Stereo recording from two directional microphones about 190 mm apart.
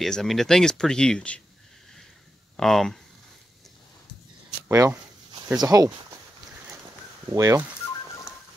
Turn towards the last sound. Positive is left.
turn(degrees=-20)  # may be behind; listen again after turning